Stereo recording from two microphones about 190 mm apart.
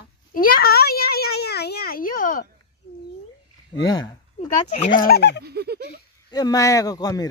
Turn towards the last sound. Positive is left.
turn(degrees=20)  # may be behind; listen again after turning